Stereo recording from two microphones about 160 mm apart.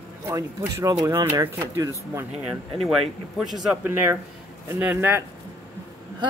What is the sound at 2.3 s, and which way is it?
Speech, 5° right (ahead or behind).